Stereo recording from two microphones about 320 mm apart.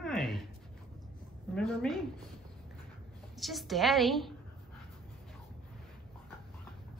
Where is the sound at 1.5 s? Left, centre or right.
Centre.